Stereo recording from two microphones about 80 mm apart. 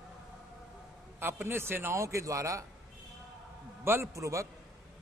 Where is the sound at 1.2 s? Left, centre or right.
Right.